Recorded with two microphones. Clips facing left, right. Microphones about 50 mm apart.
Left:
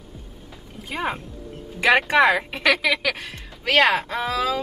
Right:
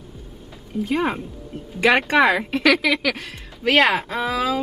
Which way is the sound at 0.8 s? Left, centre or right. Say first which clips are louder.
Right 4 dB; centre.